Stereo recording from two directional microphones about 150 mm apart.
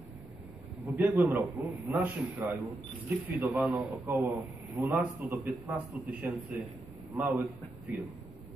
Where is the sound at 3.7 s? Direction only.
20° right (ahead or behind).